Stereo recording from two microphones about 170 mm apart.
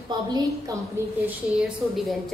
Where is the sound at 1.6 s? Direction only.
Centre (ahead or behind).